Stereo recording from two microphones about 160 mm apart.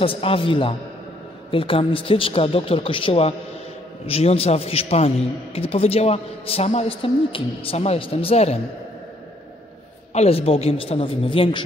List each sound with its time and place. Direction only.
0.0 s a man's voice: 35° left (ahead or behind)
10.1 s a man's voice: 40° left (ahead or behind)